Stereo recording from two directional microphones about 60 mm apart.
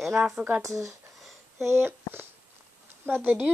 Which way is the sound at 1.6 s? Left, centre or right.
Right.